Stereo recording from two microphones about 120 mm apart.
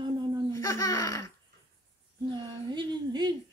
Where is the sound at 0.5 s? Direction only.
25° left (ahead or behind).